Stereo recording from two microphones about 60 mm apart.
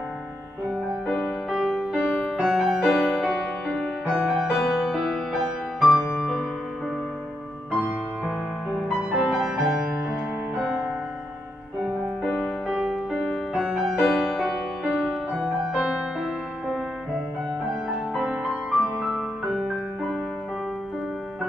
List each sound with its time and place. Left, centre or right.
1.5 s music: centre
7.8 s music: centre
9.1 s music: centre
12.6 s music: centre
15.4 s music: centre
18.3 s music: centre